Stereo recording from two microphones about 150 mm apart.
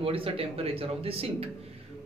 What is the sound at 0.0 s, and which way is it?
A man's voice, 40° right (ahead or behind).